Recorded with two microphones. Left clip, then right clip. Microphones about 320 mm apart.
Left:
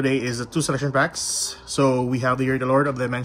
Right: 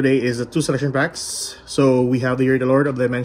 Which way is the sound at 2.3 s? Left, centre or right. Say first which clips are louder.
Right 3 dB; right.